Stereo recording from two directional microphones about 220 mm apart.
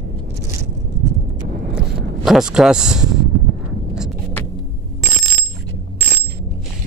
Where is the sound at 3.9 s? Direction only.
Centre (ahead or behind).